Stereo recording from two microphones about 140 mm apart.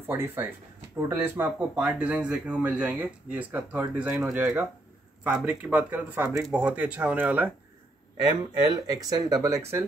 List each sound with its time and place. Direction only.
0.0 s a man's voice: 15° right (ahead or behind)
8.2 s speech: 25° right (ahead or behind)